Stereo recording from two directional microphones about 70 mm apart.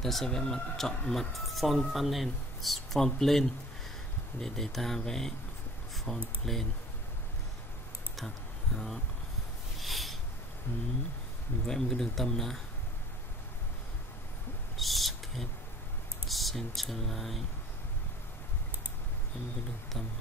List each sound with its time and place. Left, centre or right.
0.0 s speech: centre
8.7 s speech: centre
9.8 s a sound: centre
10.7 s speech: left
11.6 s speech: centre
14.8 s a sound: centre
16.3 s speech: centre